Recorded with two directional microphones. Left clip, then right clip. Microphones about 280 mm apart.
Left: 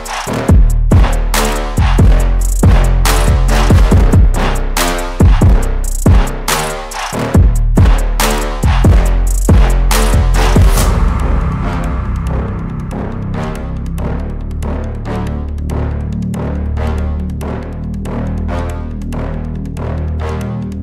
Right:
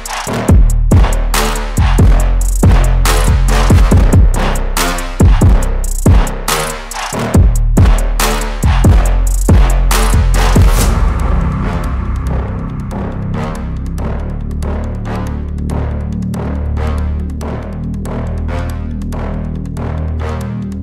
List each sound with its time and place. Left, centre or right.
0.1 s music: centre